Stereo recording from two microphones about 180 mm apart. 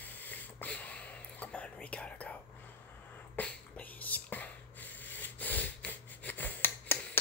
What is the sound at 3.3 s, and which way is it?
Whispering, 10° left (ahead or behind).